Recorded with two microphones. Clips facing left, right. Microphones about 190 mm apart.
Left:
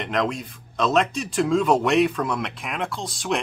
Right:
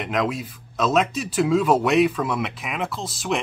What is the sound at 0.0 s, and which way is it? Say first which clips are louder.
Speech: right 1 dB; 5° right (ahead or behind).